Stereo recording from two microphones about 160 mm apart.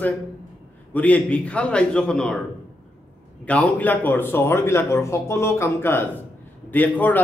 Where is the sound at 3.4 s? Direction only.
10° left (ahead or behind).